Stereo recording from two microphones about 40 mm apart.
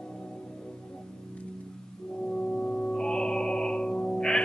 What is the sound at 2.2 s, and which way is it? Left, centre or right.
Music, left.